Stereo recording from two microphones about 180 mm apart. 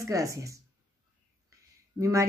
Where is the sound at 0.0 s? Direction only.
20° right (ahead or behind).